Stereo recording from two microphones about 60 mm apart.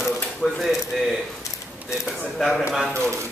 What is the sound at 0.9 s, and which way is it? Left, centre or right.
Speech, centre.